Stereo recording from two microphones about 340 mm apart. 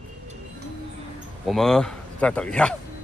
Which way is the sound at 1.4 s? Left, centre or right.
Centre.